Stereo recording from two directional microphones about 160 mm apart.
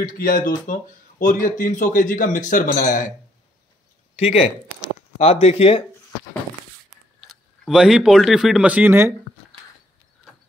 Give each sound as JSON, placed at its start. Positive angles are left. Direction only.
{"t": 0.0, "sound": "speech", "side_deg": 60}
{"t": 4.2, "sound": "speech", "side_deg": 40}
{"t": 7.6, "sound": "speech", "side_deg": -5}